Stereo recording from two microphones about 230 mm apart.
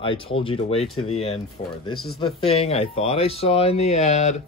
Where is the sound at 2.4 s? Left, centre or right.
Left.